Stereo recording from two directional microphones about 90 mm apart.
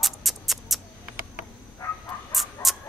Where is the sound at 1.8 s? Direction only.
40° left (ahead or behind).